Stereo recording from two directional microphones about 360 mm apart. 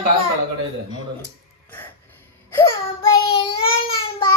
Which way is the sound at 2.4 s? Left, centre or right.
Centre.